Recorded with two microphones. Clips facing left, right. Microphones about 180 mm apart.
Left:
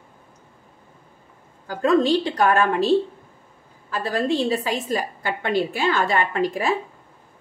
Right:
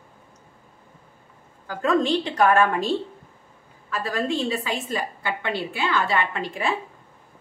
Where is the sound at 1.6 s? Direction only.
35° left (ahead or behind).